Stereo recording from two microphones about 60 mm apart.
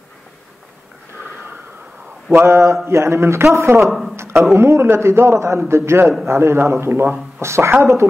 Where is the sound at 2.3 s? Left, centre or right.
Right.